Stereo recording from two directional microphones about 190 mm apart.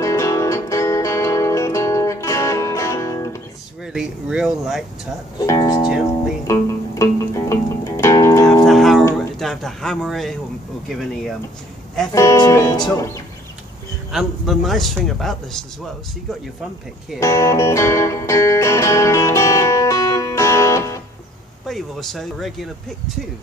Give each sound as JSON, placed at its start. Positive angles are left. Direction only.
{"t": 0.0, "sound": "music", "side_deg": 15}
{"t": 3.8, "sound": "speech", "side_deg": -5}
{"t": 5.4, "sound": "speech", "side_deg": 20}
{"t": 6.4, "sound": "music", "side_deg": 15}
{"t": 8.6, "sound": "guitar", "side_deg": 0}
{"t": 9.4, "sound": "speech", "side_deg": 0}
{"t": 12.1, "sound": "speech", "side_deg": 15}
{"t": 14.1, "sound": "speech", "side_deg": 0}
{"t": 17.2, "sound": "music", "side_deg": 15}
{"t": 21.6, "sound": "speech", "side_deg": 0}